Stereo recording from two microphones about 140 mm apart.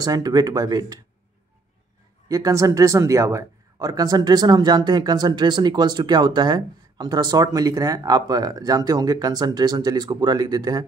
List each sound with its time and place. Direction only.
0.0 s speech: 25° right (ahead or behind)
2.2 s speech: 25° right (ahead or behind)